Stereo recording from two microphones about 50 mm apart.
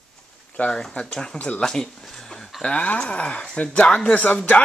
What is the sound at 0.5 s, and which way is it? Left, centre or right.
Speech, left.